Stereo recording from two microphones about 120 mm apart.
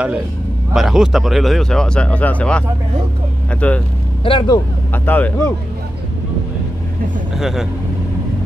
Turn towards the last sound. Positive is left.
turn(degrees=-5)  # may be behind; listen again after turning